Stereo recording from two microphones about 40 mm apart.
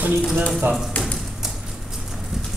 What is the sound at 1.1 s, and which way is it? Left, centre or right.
Tap, centre.